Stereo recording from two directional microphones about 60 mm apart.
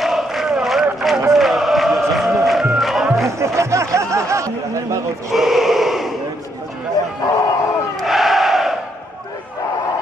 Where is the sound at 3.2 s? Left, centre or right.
Right.